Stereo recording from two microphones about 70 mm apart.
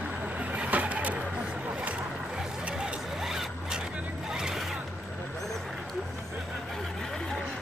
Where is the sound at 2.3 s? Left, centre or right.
Centre.